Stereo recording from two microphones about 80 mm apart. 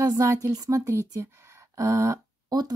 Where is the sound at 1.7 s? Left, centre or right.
Right.